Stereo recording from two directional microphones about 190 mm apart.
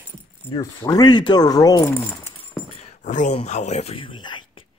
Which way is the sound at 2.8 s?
40° left (ahead or behind).